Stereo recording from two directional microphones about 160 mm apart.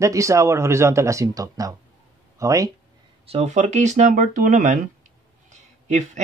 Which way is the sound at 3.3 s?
45° right (ahead or behind).